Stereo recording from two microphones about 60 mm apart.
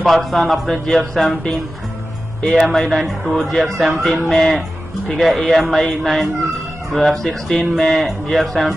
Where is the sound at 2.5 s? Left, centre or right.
Centre.